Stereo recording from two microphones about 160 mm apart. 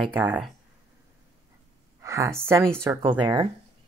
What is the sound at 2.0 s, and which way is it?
A woman's voice, 20° right (ahead or behind).